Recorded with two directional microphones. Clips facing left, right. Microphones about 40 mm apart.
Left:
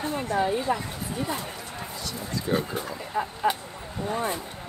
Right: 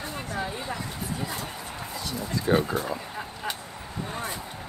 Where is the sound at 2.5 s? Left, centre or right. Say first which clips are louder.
Right 4 dB; right.